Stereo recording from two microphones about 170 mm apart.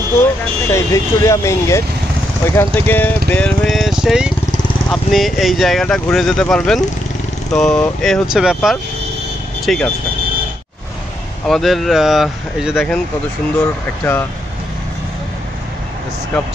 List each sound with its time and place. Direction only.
0.1 s speech: 15° left (ahead or behind)
11.4 s speech: centre (ahead or behind)